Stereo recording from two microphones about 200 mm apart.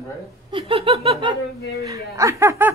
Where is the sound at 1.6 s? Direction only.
50° left (ahead or behind).